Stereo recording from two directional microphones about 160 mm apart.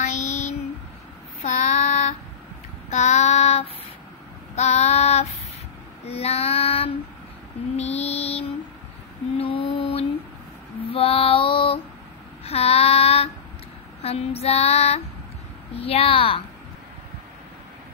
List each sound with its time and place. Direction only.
0.0 s a sound: 45° left (ahead or behind)
1.4 s child singing: 50° left (ahead or behind)
6.0 s female singing: 40° left (ahead or behind)
7.7 s mantra: 40° left (ahead or behind)
10.9 s female singing: 35° left (ahead or behind)
12.4 s child singing: 40° left (ahead or behind)
14.0 s female singing: 40° left (ahead or behind)